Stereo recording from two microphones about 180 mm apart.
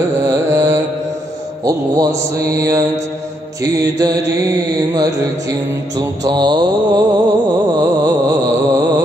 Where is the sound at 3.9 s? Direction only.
20° right (ahead or behind).